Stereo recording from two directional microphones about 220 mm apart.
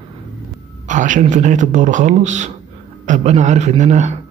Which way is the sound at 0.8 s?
35° right (ahead or behind).